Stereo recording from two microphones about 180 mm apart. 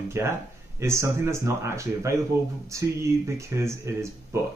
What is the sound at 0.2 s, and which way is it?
Speech, 15° right (ahead or behind).